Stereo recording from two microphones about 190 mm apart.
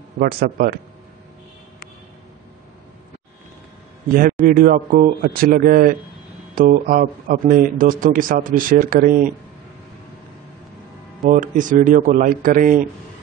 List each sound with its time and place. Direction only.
0.2 s speech: 50° right (ahead or behind)
4.1 s speech: 50° right (ahead or behind)
11.2 s speech: 45° right (ahead or behind)